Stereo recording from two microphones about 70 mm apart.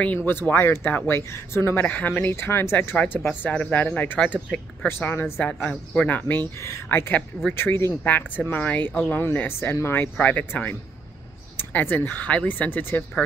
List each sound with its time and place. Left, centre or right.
0.0 s speech: left
3.3 s speech: left
4.2 s speech: centre
4.8 s speech: left
5.4 s speech: centre; by 7.9 s left
8.0 s speech: left